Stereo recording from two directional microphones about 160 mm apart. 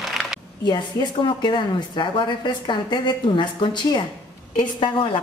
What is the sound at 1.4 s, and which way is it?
A woman's voice, 30° left (ahead or behind).